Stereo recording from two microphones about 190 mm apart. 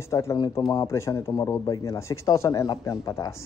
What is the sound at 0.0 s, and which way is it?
A man's voice, 15° left (ahead or behind).